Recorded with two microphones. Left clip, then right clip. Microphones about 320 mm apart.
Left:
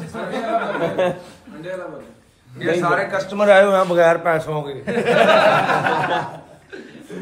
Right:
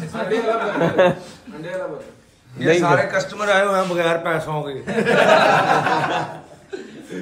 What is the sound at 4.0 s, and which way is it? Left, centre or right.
Speech, centre.